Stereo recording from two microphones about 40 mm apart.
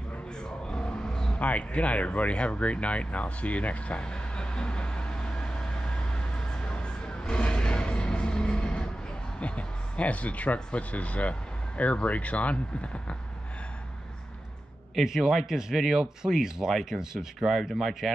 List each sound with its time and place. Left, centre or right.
0.4 s a sound: left
1.0 s vehicle: centre
1.4 s speech: left
4.0 s vehicle: left
9.4 s speech: left
15.0 s a man's voice: centre
18.0 s speech: centre